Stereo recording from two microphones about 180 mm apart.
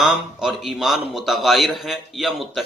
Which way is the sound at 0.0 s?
5° right (ahead or behind).